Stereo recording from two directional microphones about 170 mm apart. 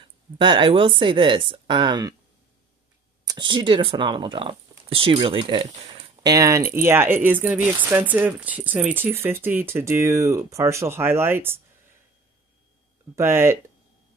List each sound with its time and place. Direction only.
0.4 s speech: 30° right (ahead or behind)
3.3 s speech: 25° right (ahead or behind)
13.1 s speech: 15° right (ahead or behind)